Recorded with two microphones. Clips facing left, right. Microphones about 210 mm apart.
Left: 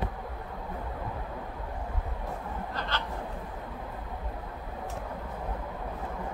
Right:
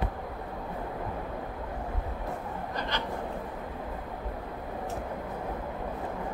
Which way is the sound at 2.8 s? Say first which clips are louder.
Right 2 dB; 15° right (ahead or behind).